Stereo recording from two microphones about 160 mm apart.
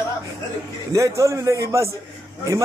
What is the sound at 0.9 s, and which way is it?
Speech, 20° right (ahead or behind).